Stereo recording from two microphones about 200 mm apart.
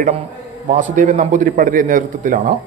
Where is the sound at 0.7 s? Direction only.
40° right (ahead or behind).